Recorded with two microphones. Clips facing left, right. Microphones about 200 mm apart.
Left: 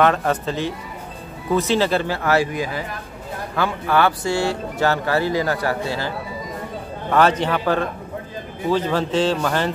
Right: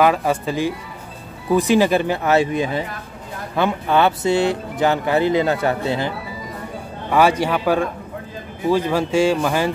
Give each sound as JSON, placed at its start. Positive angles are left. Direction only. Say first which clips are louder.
{"t": 0.0, "sound": "speech", "louder": "right 1 dB", "side_deg": -10}
{"t": 7.1, "sound": "speech", "louder": "right 1 dB", "side_deg": -10}